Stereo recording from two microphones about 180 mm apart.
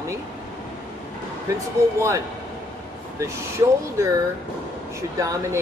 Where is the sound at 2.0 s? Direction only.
15° right (ahead or behind).